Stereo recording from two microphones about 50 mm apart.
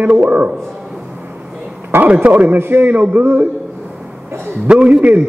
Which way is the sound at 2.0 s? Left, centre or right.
Right.